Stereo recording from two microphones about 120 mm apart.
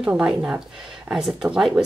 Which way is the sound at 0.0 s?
5° right (ahead or behind).